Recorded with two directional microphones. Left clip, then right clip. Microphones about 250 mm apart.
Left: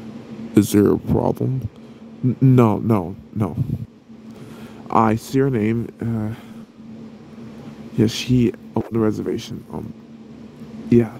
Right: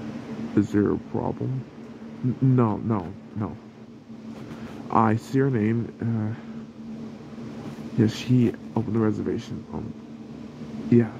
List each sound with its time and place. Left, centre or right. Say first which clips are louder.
0.6 s speech: left 7 dB; left
2.4 s speech: left 7 dB; left
4.8 s speech: left 5 dB; left
8.0 s speech: left 4 dB; left
10.9 s speech: left 5 dB; left